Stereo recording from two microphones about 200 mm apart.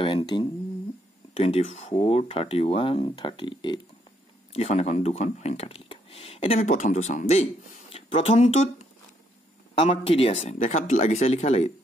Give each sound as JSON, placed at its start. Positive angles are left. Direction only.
{"t": 0.0, "sound": "speech", "side_deg": 25}